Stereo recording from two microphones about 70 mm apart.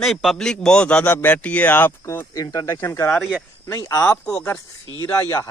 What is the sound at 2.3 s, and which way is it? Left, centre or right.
Speech, left.